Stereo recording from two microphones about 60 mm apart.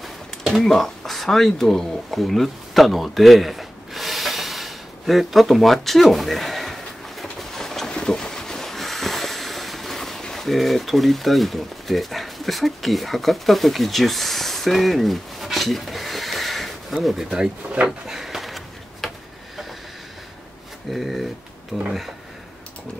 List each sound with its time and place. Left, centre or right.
0.0 s a sound: centre
20.9 s speech: centre
21.7 s speech: right